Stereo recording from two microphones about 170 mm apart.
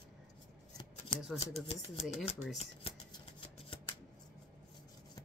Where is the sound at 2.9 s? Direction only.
35° left (ahead or behind).